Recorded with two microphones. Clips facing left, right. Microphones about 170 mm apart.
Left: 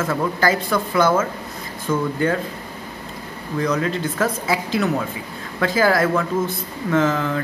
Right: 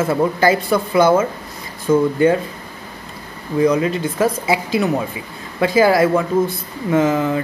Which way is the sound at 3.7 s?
15° right (ahead or behind).